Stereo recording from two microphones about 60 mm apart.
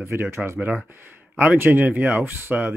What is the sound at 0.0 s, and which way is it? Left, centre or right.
Speech, right.